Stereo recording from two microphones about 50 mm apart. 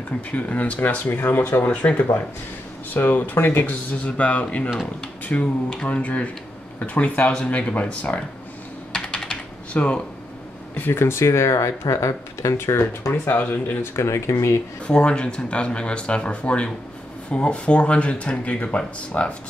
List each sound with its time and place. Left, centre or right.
0.3 s speech: left
1.7 s speech: left
2.9 s speech: left
8.9 s computer keyboard: centre
9.3 s typing: left
10.9 s speech: left
13.3 s speech: left
13.9 s speech: left
14.9 s speech: left